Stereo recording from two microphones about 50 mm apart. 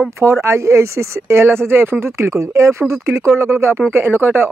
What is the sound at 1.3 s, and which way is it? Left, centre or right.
Speech, right.